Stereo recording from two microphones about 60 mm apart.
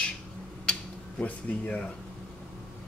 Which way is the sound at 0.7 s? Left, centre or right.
Left.